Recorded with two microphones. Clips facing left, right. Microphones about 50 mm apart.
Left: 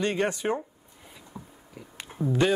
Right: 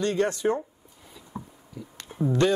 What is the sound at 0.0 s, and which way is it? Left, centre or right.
Speech, centre.